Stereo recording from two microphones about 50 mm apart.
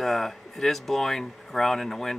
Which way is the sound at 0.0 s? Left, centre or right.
Centre.